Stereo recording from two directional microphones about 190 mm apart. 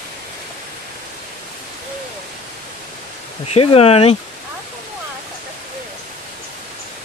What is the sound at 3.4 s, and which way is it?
Speech, 30° left (ahead or behind).